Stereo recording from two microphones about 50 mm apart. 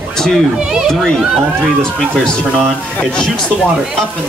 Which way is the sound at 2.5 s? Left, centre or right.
Centre.